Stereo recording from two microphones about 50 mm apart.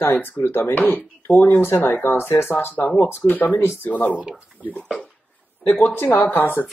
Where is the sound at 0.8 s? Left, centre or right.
Left.